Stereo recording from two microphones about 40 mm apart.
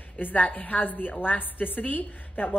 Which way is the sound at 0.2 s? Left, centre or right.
Left.